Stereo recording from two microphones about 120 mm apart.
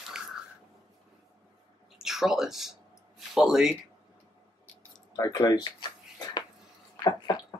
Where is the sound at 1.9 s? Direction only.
5° right (ahead or behind).